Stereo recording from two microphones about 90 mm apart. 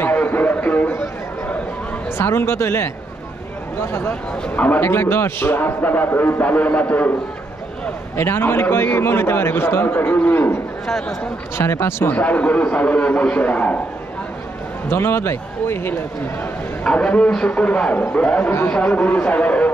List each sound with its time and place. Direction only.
0.0 s a sound: 20° left (ahead or behind)
2.1 s a man's voice: 25° left (ahead or behind)
8.2 s a man's voice: 25° left (ahead or behind)
10.9 s speech: 5° left (ahead or behind)
11.5 s a man's voice: 30° left (ahead or behind)
12.2 s a man's voice: 15° left (ahead or behind)
14.9 s a man's voice: 25° left (ahead or behind)
16.8 s a man's voice: 10° left (ahead or behind)